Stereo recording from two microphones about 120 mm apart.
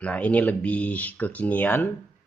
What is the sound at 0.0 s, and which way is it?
Speech, 10° left (ahead or behind).